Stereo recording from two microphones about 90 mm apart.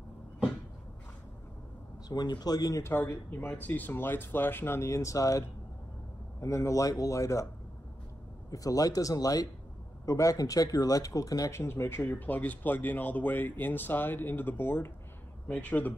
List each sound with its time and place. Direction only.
2.0 s speech: 50° left (ahead or behind)
2.8 s speech: 30° left (ahead or behind)
6.4 s speech: 35° left (ahead or behind)
8.5 s speech: 40° left (ahead or behind); by 15.9 s 15° left (ahead or behind)